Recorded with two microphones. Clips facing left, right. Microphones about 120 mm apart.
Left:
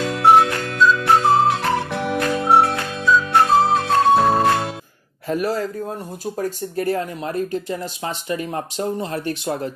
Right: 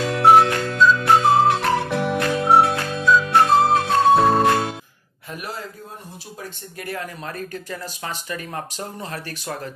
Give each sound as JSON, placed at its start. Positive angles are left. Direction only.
{"t": 0.1, "sound": "music", "side_deg": 0}
{"t": 5.3, "sound": "a man's voice", "side_deg": 40}